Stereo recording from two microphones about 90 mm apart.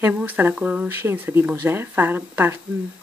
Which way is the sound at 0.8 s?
25° right (ahead or behind).